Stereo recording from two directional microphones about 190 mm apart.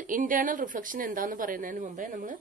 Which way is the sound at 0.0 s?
45° right (ahead or behind).